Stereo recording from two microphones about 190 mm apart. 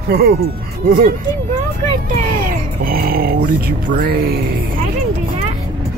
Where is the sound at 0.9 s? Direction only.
45° right (ahead or behind).